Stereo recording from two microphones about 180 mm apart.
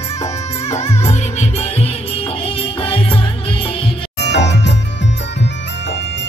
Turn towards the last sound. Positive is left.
turn(degrees=75)  # may be behind; listen again after turning